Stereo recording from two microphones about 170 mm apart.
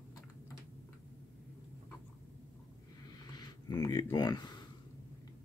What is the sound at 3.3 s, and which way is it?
Speech, 25° left (ahead or behind).